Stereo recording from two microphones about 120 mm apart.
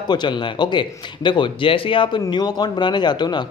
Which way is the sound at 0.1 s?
40° left (ahead or behind).